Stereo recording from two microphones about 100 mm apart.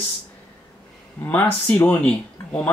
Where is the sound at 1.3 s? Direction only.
20° left (ahead or behind).